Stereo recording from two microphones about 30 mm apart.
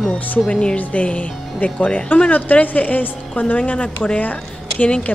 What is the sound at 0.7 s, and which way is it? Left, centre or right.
A woman's voice, left.